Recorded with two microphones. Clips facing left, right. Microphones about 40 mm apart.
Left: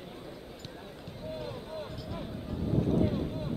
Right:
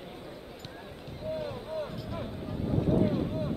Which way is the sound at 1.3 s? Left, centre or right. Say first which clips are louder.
Right 4 dB; centre.